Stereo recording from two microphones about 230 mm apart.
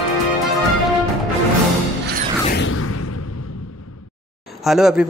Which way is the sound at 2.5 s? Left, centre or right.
Left.